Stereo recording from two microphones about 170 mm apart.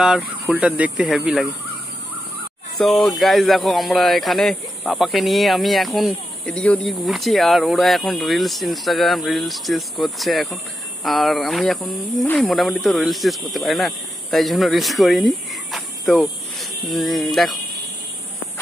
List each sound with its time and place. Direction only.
0.0 s speech: 5° right (ahead or behind)
2.8 s speech: centre (ahead or behind)